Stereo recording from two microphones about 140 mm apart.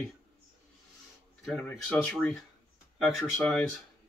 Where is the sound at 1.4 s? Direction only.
5° left (ahead or behind).